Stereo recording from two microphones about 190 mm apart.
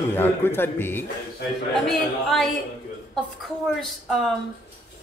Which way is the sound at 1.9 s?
Centre (ahead or behind).